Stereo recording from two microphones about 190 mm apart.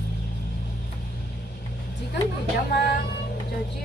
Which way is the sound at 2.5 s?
60° left (ahead or behind).